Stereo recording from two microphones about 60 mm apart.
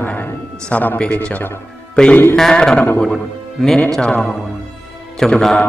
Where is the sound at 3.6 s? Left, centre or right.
Centre.